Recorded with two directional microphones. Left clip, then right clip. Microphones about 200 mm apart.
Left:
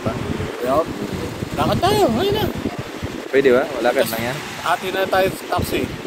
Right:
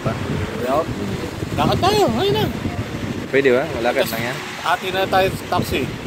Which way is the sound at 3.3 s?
25° left (ahead or behind).